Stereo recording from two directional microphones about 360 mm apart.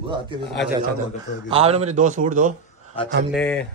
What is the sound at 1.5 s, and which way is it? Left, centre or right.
A man's voice, centre.